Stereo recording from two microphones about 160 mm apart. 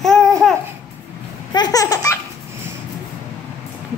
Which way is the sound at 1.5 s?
25° left (ahead or behind).